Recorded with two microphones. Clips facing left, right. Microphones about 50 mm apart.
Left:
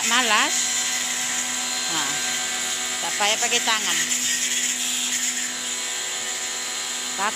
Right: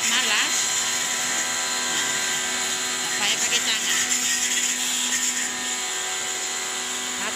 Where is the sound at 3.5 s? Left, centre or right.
Centre.